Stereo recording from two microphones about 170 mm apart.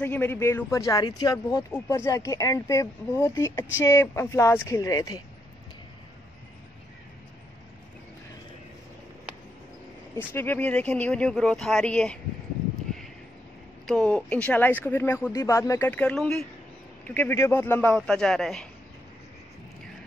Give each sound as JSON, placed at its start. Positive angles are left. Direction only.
{"t": 0.0, "sound": "speech", "side_deg": 10}
{"t": 10.1, "sound": "speech", "side_deg": 10}
{"t": 13.8, "sound": "speech", "side_deg": 5}